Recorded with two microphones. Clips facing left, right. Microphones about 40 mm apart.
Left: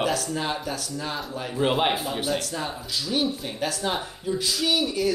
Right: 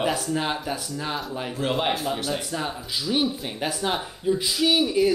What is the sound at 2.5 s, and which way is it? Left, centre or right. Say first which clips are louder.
Speech: right 1 dB; centre.